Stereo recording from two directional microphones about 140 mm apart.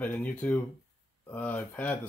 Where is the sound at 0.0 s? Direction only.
10° left (ahead or behind).